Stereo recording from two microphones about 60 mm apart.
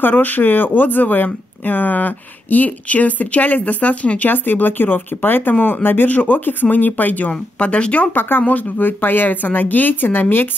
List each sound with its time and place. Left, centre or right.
0.0 s speech: left